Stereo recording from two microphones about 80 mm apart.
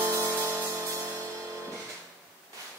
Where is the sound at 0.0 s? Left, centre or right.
Right.